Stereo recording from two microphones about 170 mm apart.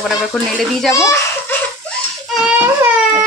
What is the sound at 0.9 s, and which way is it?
Speech, 15° left (ahead or behind).